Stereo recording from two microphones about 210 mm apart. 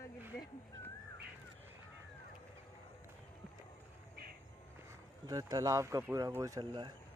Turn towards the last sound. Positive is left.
turn(degrees=-20)  # may be behind; listen again after turning